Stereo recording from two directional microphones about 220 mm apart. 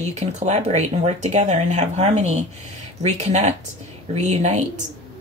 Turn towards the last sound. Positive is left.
turn(degrees=-30)  # may be behind; listen again after turning